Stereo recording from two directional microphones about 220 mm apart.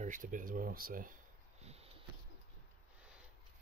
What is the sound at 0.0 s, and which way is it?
Speech, 35° right (ahead or behind).